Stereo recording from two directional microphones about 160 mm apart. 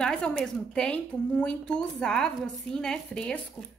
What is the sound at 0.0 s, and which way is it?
A woman's voice, 5° left (ahead or behind).